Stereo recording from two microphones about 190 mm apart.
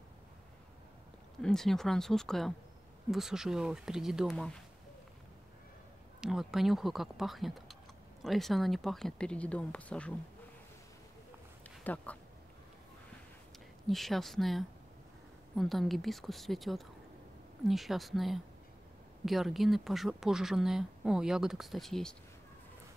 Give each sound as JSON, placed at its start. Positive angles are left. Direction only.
{"t": 1.4, "sound": "speech", "side_deg": 0}
{"t": 6.2, "sound": "speech", "side_deg": 0}
{"t": 11.8, "sound": "speech", "side_deg": 10}
{"t": 13.8, "sound": "speech", "side_deg": 0}